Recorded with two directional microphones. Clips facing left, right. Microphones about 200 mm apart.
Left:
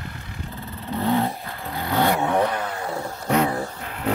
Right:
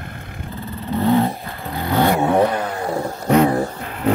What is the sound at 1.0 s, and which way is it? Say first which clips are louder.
Dog: right 5 dB; 20° right (ahead or behind).